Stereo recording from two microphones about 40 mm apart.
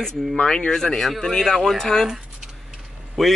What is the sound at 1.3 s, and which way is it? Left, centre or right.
Speech, centre.